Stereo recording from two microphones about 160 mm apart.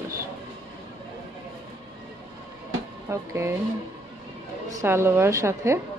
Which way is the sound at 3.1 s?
15° right (ahead or behind).